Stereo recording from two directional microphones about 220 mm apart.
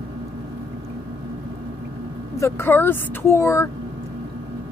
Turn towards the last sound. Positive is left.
turn(degrees=10)  # may be behind; listen again after turning